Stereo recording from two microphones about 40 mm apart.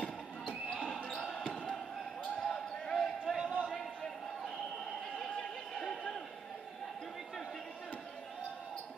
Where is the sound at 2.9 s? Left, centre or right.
Centre.